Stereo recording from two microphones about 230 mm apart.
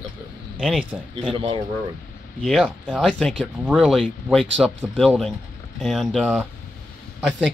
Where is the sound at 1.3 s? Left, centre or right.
Right.